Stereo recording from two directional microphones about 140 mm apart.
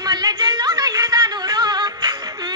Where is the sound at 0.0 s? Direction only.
30° right (ahead or behind).